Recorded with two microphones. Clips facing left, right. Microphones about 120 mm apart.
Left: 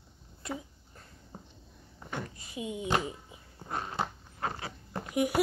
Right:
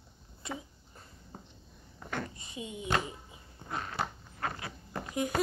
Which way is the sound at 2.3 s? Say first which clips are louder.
Left 4 dB; 5° left (ahead or behind).